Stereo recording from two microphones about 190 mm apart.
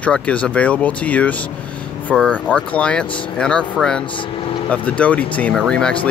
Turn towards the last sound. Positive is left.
turn(degrees=5)  # may be behind; listen again after turning